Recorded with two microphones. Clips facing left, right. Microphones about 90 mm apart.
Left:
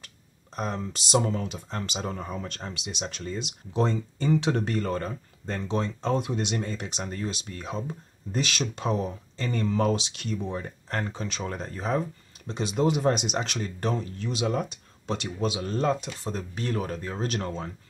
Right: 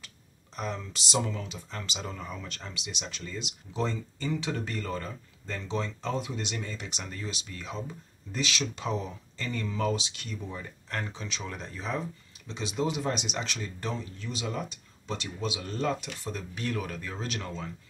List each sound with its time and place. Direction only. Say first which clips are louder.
0.6 s speech: left 4 dB; 40° left (ahead or behind); by 6.5 s 60° left (ahead or behind)
6.5 s speech: left 6 dB; 45° left (ahead or behind)
9.8 s speech: left 4 dB; 65° left (ahead or behind)
10.9 s speech: left 4 dB; 40° left (ahead or behind)